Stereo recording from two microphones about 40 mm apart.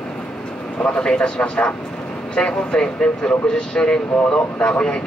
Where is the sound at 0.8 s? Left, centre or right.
Left.